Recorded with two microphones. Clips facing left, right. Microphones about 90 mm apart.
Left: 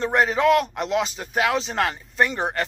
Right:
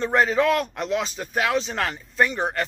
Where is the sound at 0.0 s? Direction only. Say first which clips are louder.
Even; 15° left (ahead or behind).